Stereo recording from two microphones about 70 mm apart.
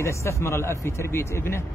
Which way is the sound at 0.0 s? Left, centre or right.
Left.